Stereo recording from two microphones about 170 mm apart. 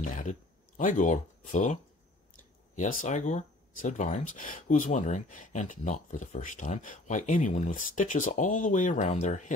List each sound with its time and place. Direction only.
0.0 s speech: 45° left (ahead or behind)